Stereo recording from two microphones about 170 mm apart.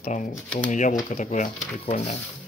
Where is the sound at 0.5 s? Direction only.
45° left (ahead or behind).